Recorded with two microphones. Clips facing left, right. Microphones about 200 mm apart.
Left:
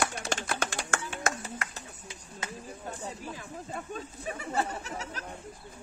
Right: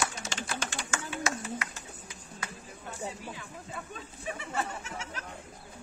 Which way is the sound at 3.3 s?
40° left (ahead or behind).